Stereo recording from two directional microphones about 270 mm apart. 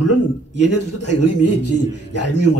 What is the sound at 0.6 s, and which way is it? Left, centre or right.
A man's voice, left.